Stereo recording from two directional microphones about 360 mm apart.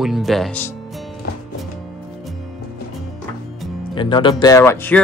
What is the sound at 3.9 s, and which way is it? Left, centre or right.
Speech, centre.